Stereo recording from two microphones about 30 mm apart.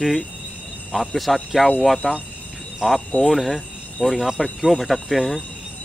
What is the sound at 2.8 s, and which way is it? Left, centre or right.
Speech, right.